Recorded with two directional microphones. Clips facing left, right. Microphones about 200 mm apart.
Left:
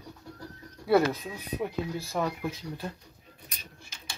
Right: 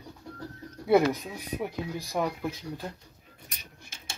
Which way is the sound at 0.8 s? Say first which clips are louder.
Right 1 dB; 15° right (ahead or behind).